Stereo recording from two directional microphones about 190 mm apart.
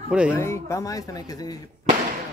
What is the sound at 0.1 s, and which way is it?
Speech, 5° right (ahead or behind).